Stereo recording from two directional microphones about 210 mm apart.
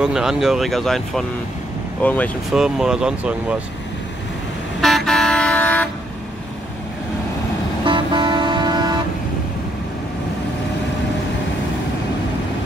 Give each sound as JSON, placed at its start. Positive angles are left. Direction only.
{"t": 0.0, "sound": "speech", "side_deg": -5}
{"t": 4.8, "sound": "vehicle", "side_deg": 0}
{"t": 7.8, "sound": "vehicle", "side_deg": -20}